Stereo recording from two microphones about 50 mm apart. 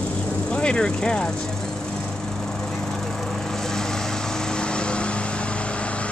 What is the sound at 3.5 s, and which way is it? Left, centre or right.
Vehicle, centre.